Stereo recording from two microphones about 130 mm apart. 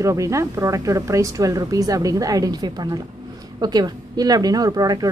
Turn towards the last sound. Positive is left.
turn(degrees=-30)  # may be behind; listen again after turning